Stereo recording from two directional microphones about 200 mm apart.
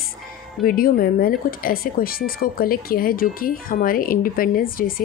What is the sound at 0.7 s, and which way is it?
Speech, 45° left (ahead or behind).